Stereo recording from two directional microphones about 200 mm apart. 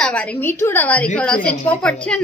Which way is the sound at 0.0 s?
5° left (ahead or behind).